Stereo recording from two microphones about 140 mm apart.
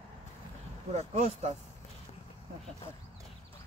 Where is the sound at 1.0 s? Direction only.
50° right (ahead or behind).